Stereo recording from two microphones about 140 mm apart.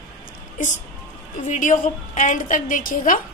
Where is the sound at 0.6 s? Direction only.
65° left (ahead or behind).